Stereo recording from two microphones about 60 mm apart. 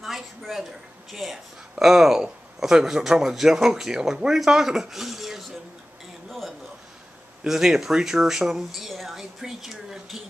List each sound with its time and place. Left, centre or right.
0.0 s speech: centre
7.4 s speech: centre